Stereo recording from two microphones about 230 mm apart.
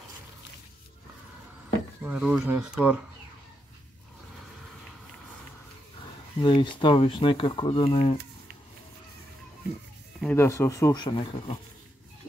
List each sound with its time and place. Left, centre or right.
2.0 s speech: centre
6.4 s speech: centre
10.2 s speech: centre